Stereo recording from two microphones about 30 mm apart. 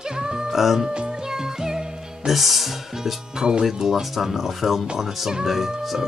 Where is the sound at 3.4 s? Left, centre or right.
Right.